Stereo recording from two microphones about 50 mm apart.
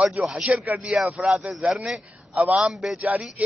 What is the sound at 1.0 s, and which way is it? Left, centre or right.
Speech, centre.